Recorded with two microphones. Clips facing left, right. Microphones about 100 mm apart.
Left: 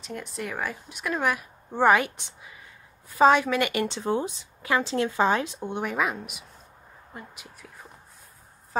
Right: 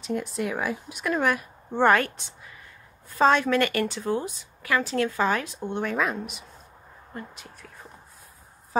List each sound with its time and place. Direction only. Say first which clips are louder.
0.0 s a woman's voice: right 6 dB; centre (ahead or behind)
3.8 s a woman's voice: left 1 dB; 25° left (ahead or behind); by 7.7 s 10° left (ahead or behind)